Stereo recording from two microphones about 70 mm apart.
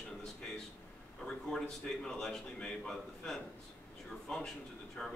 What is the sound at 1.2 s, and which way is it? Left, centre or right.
A man's voice, centre.